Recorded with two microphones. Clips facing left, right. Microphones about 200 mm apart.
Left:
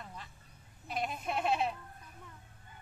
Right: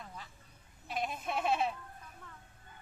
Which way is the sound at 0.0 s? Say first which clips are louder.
Even; centre (ahead or behind).